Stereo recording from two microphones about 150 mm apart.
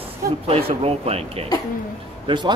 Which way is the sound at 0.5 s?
40° right (ahead or behind).